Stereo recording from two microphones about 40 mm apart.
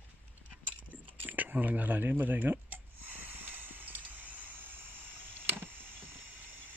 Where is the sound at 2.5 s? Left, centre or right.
Right.